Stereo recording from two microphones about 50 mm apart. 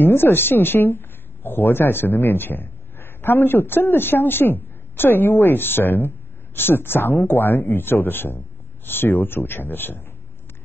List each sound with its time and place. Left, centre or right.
0.0 s speech: left